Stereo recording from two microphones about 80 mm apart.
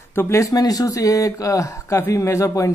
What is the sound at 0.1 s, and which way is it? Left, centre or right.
A man's voice, left.